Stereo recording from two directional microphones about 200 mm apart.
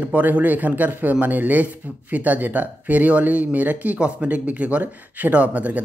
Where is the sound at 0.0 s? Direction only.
10° right (ahead or behind).